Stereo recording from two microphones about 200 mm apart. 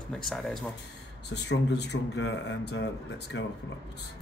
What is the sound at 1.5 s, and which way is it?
Speech, 60° left (ahead or behind).